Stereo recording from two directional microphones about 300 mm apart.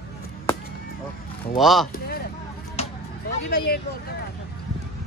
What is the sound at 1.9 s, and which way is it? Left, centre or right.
Speech, left.